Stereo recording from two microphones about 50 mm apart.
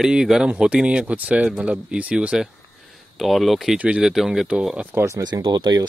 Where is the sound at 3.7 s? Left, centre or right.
Right.